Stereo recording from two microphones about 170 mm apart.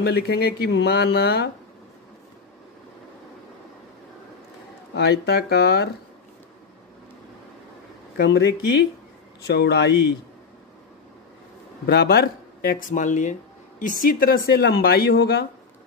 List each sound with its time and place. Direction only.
0.0 s speech: 70° left (ahead or behind)
4.9 s speech: 75° left (ahead or behind)
8.2 s speech: 80° left
11.8 s speech: 70° left (ahead or behind)